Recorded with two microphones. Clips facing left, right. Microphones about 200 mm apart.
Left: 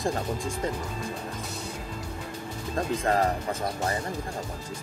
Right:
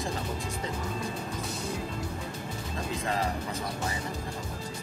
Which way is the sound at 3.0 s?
50° left (ahead or behind).